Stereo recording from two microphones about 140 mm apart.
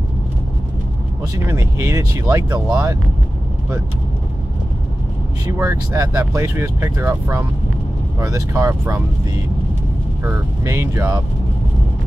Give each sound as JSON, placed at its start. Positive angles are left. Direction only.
{"t": 1.3, "sound": "speech", "side_deg": -20}
{"t": 5.6, "sound": "speech", "side_deg": -20}
{"t": 10.2, "sound": "speech", "side_deg": -20}